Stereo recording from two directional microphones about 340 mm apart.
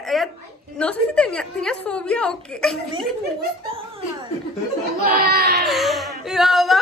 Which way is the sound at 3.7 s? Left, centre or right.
Centre.